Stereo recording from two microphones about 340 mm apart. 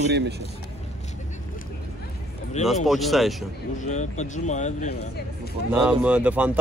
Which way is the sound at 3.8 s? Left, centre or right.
Left.